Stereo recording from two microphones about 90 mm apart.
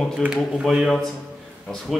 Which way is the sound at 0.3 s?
10° right (ahead or behind).